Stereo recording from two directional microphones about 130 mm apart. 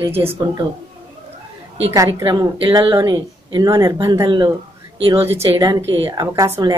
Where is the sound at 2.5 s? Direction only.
40° right (ahead or behind).